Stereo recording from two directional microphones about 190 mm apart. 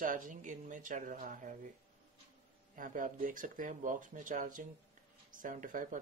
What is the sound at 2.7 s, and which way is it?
Speech, 45° right (ahead or behind).